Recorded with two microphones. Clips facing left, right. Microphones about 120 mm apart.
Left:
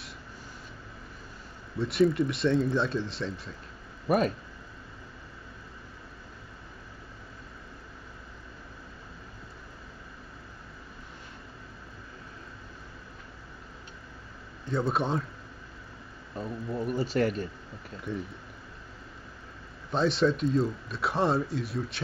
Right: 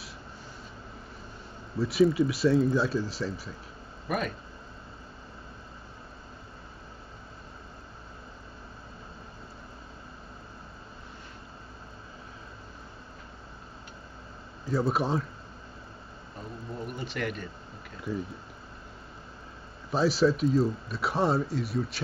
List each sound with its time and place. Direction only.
1.8 s speech: 5° right (ahead or behind)
4.1 s speech: 35° left (ahead or behind)
14.6 s a man's voice: 5° right (ahead or behind)
16.8 s speech: 35° left (ahead or behind)
18.1 s speech: centre (ahead or behind)
19.9 s speech: 5° right (ahead or behind)